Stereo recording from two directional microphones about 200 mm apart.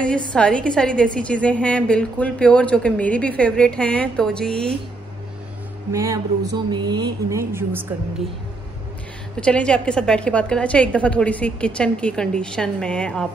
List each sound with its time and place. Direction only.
0.0 s a woman's voice: 5° left (ahead or behind)
5.9 s speech: 15° right (ahead or behind)
9.4 s a woman's voice: 5° left (ahead or behind)